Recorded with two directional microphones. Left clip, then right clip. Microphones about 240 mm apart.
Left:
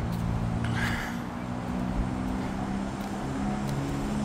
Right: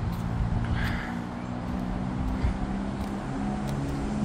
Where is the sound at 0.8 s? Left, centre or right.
Left.